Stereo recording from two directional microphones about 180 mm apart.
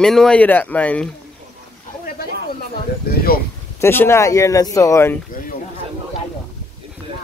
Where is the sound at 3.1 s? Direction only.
60° left (ahead or behind).